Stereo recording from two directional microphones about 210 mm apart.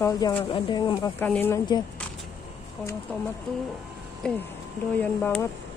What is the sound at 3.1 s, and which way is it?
Speech, 5° left (ahead or behind).